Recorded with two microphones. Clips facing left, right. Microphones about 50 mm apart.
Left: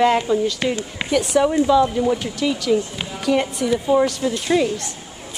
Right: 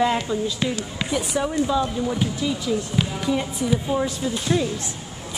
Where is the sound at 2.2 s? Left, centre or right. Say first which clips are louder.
Left 4 dB; left.